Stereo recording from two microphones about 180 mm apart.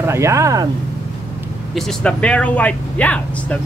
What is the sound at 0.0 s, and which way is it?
Speech, 15° right (ahead or behind).